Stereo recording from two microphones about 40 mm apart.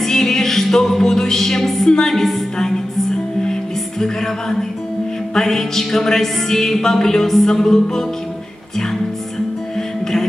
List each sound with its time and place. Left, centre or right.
0.0 s music: centre
2.5 s music: centre
4.0 s music: centre